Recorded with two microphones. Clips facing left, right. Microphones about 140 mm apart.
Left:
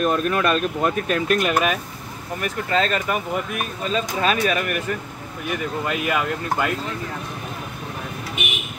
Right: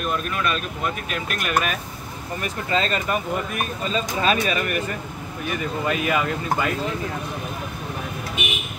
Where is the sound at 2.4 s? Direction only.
Centre (ahead or behind).